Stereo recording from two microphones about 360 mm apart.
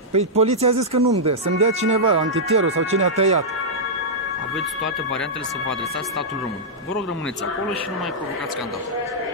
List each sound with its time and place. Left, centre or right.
0.1 s speech: centre
4.6 s speech: centre